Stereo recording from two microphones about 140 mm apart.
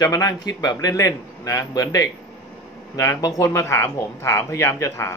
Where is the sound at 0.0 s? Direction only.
25° left (ahead or behind).